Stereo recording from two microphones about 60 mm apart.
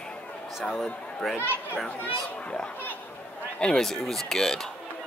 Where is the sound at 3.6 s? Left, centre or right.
Centre.